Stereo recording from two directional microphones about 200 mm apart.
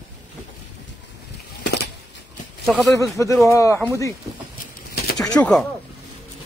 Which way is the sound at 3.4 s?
15° left (ahead or behind).